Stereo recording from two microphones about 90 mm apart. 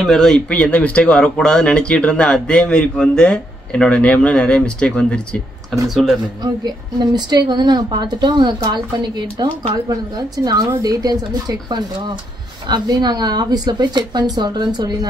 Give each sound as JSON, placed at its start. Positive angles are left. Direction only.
{"t": 0.0, "sound": "speech", "side_deg": 5}
{"t": 5.9, "sound": "speech", "side_deg": 0}
{"t": 6.4, "sound": "a woman's voice", "side_deg": -50}